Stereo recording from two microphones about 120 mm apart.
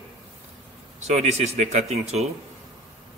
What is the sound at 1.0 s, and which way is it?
A man's voice, 70° right (ahead or behind).